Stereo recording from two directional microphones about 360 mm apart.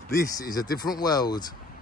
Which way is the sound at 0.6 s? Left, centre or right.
Left.